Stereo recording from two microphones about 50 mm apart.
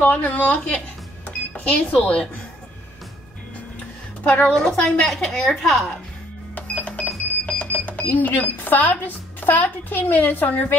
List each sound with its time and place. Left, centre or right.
0.0 s cash register: left
1.6 s speech: left
4.2 s a woman's voice: left
4.5 s a woman's voice: centre
6.5 s cash register: left
7.4 s alarm clock: left
8.0 s a woman's voice: left